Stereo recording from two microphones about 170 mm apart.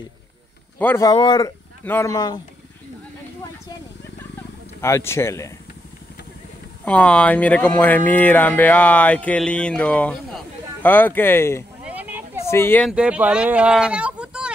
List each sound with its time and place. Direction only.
0.7 s speech: 10° left (ahead or behind)
1.0 s speech: 25° left (ahead or behind)
4.8 s speech: 15° left (ahead or behind)
6.8 s speech: 5° left (ahead or behind)
11.8 s a sound: 10° right (ahead or behind)
12.4 s speech: 15° left (ahead or behind)
12.8 s speech: 5° right (ahead or behind)